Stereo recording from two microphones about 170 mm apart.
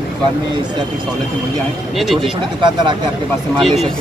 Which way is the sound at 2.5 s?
25° right (ahead or behind).